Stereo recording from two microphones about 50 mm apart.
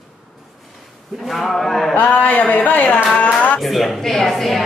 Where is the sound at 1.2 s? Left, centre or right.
Centre.